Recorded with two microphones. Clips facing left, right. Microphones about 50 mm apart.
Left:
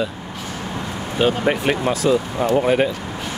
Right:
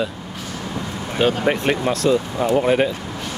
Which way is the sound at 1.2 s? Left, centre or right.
Centre.